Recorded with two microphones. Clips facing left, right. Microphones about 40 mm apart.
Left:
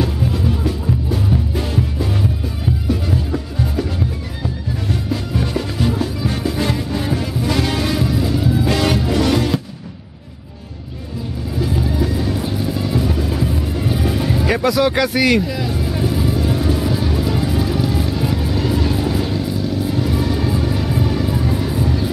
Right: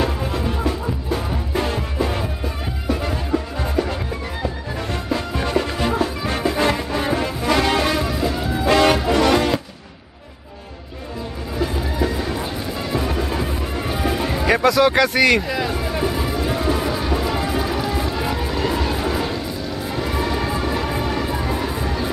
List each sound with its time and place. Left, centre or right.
0.0 s music: centre
5.1 s music: centre
11.5 s music: centre
14.5 s speech: centre
15.4 s music: right